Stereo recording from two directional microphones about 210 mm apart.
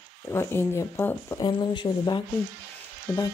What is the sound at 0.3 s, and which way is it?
Speech, 10° left (ahead or behind).